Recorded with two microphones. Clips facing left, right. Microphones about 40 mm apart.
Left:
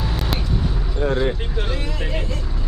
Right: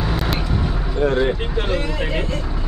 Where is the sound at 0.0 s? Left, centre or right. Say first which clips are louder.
Right 4 dB; centre.